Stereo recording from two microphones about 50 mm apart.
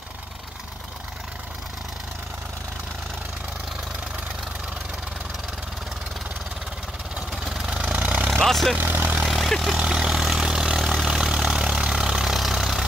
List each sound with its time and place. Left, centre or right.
7.4 s vehicle: centre
7.7 s engine: right
8.3 s vehicle: centre
8.7 s vehicle: right
9.3 s vehicle: centre
9.8 s vehicle: centre